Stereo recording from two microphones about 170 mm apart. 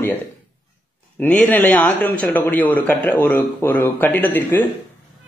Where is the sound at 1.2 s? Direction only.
10° left (ahead or behind).